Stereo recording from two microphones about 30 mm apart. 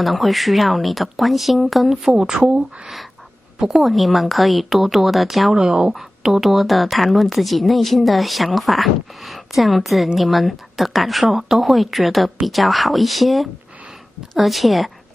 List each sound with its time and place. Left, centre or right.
0.0 s a woman's voice: centre
2.0 s speech: right
3.8 s a woman's voice: centre
5.6 s speech: right
5.9 s a woman's voice: centre
11.3 s a woman's voice: centre